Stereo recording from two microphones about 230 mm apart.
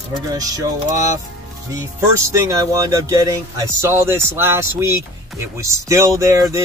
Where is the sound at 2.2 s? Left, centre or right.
Centre.